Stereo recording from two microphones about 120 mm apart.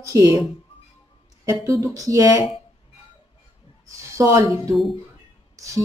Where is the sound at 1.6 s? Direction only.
25° right (ahead or behind).